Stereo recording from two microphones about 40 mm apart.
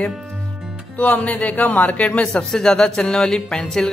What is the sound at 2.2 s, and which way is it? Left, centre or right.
A man's voice, centre.